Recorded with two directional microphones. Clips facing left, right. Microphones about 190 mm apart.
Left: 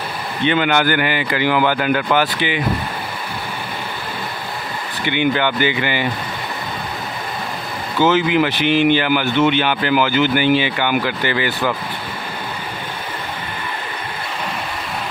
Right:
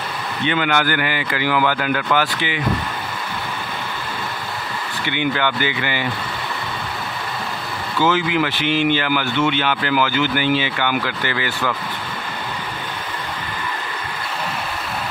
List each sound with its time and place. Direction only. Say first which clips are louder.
0.5 s speech: left 3 dB; 20° left (ahead or behind)
2.1 s speech: left 3 dB; 15° left (ahead or behind)
5.0 s speech: left 4 dB; 15° left (ahead or behind)
8.0 s speech: left 3 dB; 20° left (ahead or behind)